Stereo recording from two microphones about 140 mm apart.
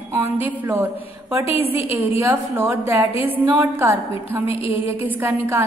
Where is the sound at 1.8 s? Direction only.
20° right (ahead or behind).